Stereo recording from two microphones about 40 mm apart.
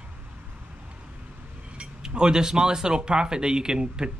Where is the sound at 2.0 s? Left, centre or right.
Centre.